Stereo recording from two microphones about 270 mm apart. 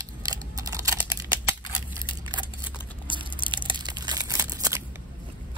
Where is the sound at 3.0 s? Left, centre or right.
Centre.